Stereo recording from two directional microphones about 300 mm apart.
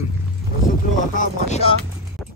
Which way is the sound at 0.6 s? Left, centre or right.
Left.